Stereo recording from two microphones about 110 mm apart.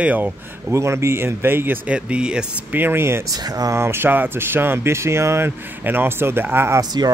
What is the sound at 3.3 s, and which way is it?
Speech, 35° right (ahead or behind).